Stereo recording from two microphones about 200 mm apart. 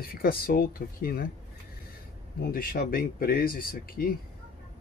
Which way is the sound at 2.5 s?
45° left (ahead or behind).